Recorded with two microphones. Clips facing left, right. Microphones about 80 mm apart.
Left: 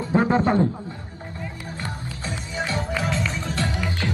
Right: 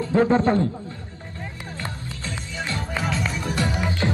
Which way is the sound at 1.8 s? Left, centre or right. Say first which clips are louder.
Even; left.